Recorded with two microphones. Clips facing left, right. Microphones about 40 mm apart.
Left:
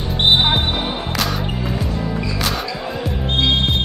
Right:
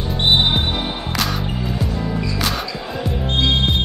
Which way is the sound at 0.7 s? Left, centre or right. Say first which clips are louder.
Left 1 dB; centre.